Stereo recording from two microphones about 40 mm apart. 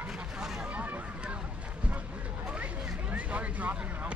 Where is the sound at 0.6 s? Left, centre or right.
Right.